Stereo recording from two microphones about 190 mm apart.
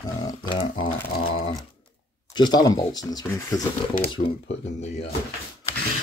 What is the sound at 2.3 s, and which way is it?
Speech, 20° left (ahead or behind).